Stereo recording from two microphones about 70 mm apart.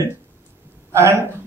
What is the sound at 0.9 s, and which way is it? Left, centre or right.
Speech, right.